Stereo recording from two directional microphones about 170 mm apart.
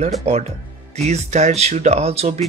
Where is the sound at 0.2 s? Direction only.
40° right (ahead or behind).